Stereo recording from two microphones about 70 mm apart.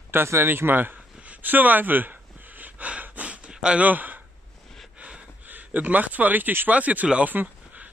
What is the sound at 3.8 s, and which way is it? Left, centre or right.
Speech, right.